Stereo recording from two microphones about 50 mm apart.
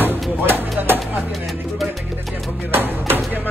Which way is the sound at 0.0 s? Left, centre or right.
Right.